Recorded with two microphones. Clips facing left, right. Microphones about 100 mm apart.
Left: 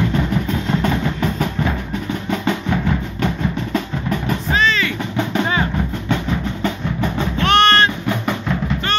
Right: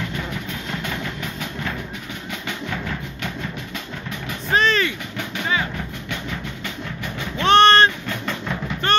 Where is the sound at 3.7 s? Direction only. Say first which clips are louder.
Left 10 dB; 45° left (ahead or behind).